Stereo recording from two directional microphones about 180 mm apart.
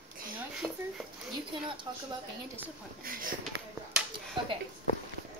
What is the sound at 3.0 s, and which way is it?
Speech, 55° right (ahead or behind).